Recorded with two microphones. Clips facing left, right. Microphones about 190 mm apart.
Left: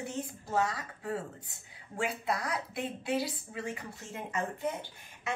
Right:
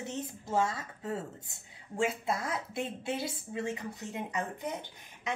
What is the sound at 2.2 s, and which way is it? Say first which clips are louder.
A woman's voice: even; 25° right (ahead or behind).